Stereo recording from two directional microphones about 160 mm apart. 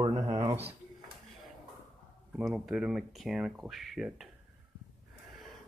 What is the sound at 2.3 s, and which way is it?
Speech, 5° right (ahead or behind).